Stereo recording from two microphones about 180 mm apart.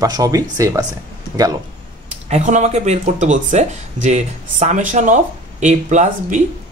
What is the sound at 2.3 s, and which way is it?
Speech, 40° right (ahead or behind).